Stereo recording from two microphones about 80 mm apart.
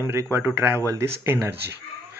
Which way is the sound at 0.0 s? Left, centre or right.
Right.